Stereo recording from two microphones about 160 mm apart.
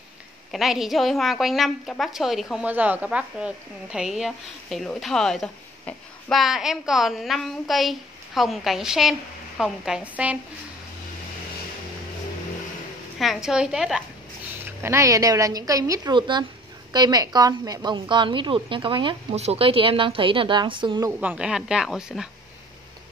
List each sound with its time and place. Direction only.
0.5 s a woman's voice: centre (ahead or behind)
13.2 s a woman's voice: centre (ahead or behind)
14.6 s a woman's voice: 15° right (ahead or behind)
21.2 s a woman's voice: 5° right (ahead or behind)